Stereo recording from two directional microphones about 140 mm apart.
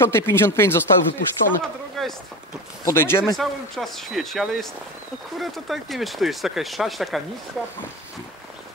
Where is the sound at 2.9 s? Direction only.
15° left (ahead or behind).